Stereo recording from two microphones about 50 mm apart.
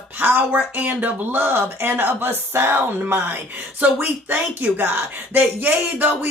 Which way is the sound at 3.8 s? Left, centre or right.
Right.